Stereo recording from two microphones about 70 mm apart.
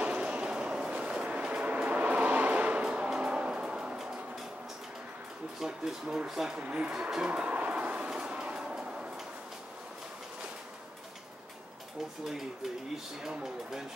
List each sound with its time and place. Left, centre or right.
0.0 s train: centre
5.6 s speech: centre
6.6 s a sound: centre
13.2 s speech: centre